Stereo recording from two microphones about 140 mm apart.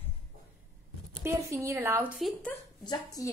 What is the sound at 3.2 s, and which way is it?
Speech, 25° left (ahead or behind).